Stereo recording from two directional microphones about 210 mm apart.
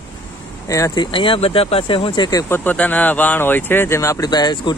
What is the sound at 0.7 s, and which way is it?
Speech, 15° left (ahead or behind).